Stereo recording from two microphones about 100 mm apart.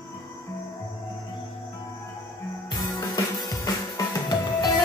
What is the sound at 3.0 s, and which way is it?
Music, 40° left (ahead or behind).